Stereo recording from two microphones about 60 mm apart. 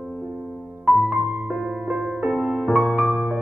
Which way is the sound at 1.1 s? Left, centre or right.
Right.